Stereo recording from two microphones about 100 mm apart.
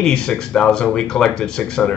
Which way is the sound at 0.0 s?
5° left (ahead or behind).